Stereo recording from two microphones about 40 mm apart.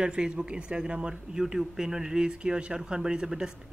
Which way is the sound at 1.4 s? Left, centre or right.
Centre.